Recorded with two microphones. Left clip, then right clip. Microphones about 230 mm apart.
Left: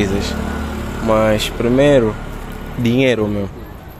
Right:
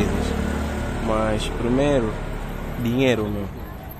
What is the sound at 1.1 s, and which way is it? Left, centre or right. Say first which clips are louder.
Speech: left 9 dB; left.